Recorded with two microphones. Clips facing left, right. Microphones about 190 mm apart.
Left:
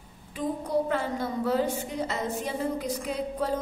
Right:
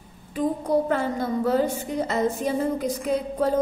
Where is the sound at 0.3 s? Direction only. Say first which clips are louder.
Right 6 dB; 45° right (ahead or behind).